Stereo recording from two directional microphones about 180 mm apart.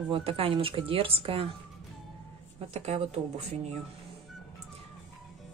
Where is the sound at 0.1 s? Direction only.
30° right (ahead or behind).